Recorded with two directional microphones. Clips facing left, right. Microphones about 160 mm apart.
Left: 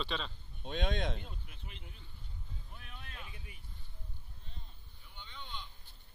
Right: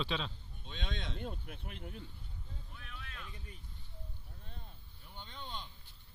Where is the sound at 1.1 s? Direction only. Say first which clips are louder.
Right 7 dB; 55° right (ahead or behind).